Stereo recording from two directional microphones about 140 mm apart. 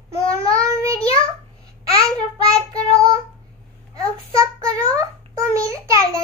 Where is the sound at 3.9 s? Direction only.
25° right (ahead or behind).